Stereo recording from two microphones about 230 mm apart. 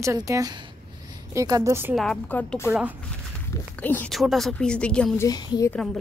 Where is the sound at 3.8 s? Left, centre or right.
Centre.